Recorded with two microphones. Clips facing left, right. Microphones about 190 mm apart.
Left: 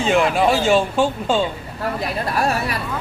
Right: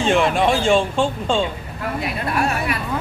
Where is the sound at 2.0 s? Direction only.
35° left (ahead or behind).